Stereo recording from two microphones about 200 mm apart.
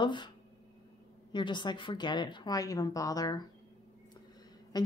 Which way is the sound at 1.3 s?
25° left (ahead or behind).